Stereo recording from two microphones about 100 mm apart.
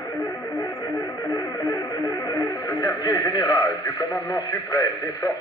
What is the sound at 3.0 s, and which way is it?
Speech, 40° left (ahead or behind).